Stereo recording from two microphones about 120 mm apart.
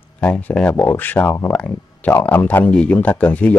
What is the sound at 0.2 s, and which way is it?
Speech, 10° left (ahead or behind).